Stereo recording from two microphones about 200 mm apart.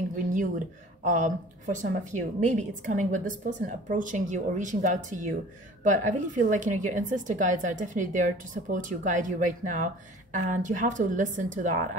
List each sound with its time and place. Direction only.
1.0 s a woman's voice: 40° right (ahead or behind)